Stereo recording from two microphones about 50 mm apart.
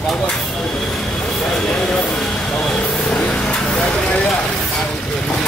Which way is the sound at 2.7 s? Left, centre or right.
Left.